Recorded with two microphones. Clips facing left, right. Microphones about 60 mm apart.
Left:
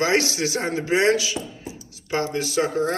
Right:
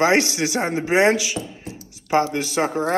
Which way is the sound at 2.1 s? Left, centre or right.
Right.